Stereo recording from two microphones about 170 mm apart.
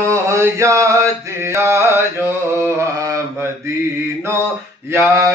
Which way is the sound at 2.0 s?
15° right (ahead or behind).